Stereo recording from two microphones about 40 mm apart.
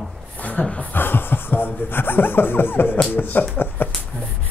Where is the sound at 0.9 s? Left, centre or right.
Left.